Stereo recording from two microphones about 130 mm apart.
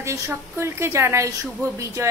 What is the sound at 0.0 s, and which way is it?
A woman's voice, 20° right (ahead or behind).